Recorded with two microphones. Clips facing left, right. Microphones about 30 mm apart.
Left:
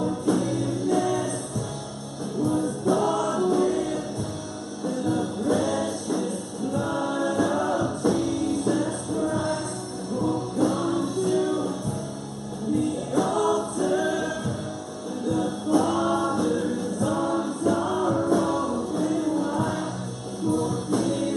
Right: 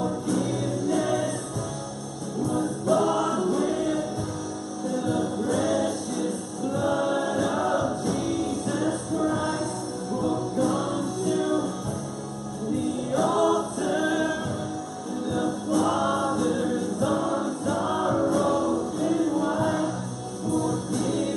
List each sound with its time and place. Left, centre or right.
0.4 s music: centre
1.0 s music: centre
2.9 s music: centre
5.1 s music: centre
6.7 s choir: centre
8.0 s music: centre
12.7 s music: centre
15.8 s choir: centre
18.2 s music: centre
18.6 s music: centre
18.9 s music: centre
20.5 s music: left
21.0 s music: centre